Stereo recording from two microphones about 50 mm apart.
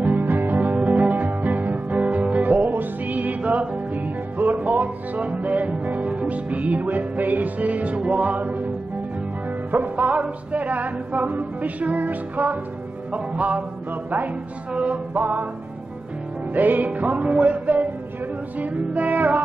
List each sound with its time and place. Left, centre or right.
0.0 s music: right
15.1 s music: right
16.5 s music: right